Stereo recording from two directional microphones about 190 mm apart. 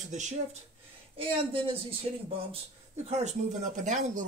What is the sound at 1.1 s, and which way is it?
Speech, 30° right (ahead or behind).